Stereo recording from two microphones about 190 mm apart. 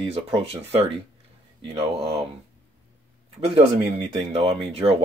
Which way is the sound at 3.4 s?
30° right (ahead or behind).